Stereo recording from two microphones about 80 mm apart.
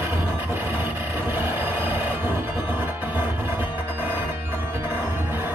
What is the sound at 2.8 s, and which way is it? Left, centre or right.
Music, right.